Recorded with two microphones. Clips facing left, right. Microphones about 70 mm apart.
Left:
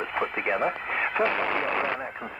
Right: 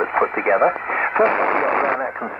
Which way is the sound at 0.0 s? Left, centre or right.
Right.